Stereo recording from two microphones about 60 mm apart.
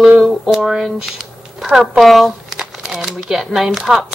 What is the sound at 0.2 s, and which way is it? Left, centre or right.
Speech, centre.